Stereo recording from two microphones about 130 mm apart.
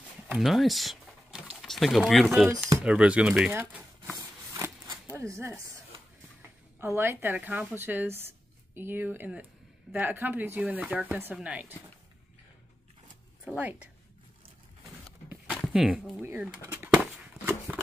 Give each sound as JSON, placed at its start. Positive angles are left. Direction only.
{"t": 0.3, "sound": "speech", "side_deg": 0}
{"t": 3.5, "sound": "a sound", "side_deg": -15}
{"t": 5.1, "sound": "speech", "side_deg": -20}
{"t": 6.8, "sound": "speech", "side_deg": -20}
{"t": 13.6, "sound": "speech", "side_deg": -15}
{"t": 15.5, "sound": "a sound", "side_deg": 0}
{"t": 16.2, "sound": "speech", "side_deg": -10}